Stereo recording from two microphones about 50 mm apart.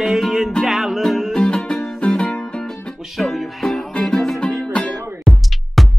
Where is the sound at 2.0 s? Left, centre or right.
Left.